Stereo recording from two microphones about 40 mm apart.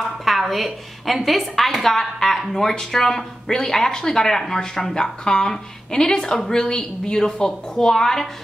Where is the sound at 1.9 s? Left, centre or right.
Centre.